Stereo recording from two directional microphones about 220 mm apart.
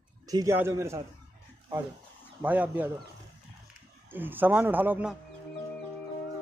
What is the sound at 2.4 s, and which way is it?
Speech, 10° right (ahead or behind).